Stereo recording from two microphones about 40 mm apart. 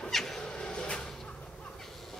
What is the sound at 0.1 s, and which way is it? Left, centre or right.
Music, centre.